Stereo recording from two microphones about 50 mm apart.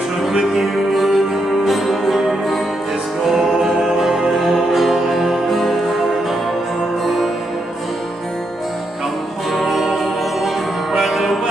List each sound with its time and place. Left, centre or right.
0.2 s music: centre
9.5 s music: centre